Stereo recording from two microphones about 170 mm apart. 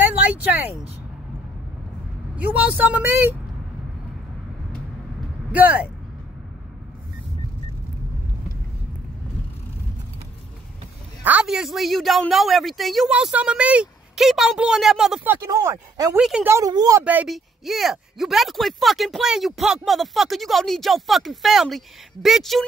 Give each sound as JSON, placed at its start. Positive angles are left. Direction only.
{"t": 0.0, "sound": "speech", "side_deg": -10}
{"t": 2.3, "sound": "a woman's voice", "side_deg": -10}
{"t": 5.5, "sound": "a woman's voice", "side_deg": -10}
{"t": 11.2, "sound": "speech", "side_deg": -5}
{"t": 15.4, "sound": "speech", "side_deg": -20}
{"t": 16.2, "sound": "speech", "side_deg": -5}
{"t": 16.5, "sound": "speech", "side_deg": -20}
{"t": 17.0, "sound": "speech", "side_deg": -10}